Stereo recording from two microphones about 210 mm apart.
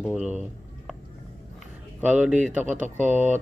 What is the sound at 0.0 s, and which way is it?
Speech, 5° right (ahead or behind).